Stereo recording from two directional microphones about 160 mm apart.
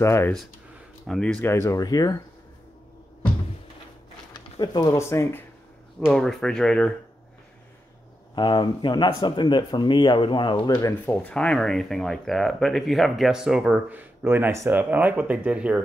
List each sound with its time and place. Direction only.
0.0 s speech: 15° left (ahead or behind)
1.0 s speech: 5° left (ahead or behind); by 2.2 s 25° left (ahead or behind)
4.3 s speech: 25° left (ahead or behind)
5.9 s speech: 5° left (ahead or behind)
8.4 s speech: 30° left (ahead or behind); by 15.8 s 5° right (ahead or behind)